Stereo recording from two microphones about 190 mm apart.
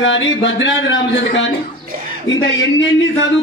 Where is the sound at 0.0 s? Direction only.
75° left (ahead or behind).